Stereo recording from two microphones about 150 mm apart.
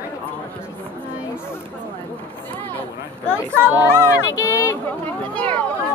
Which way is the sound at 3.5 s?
15° right (ahead or behind).